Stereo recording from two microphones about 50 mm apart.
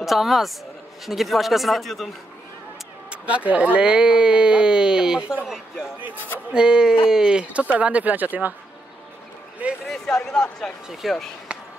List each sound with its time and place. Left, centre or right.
0.0 s speech: centre
3.1 s speech: right
6.5 s speech: centre; by 8.5 s right
9.6 s a sound: right
10.1 s speech: centre
10.9 s speech: centre